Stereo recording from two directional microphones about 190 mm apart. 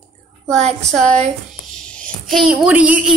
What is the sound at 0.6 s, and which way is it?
Speech, 35° right (ahead or behind).